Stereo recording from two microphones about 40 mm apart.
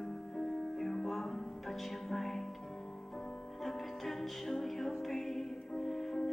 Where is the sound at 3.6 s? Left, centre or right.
Centre.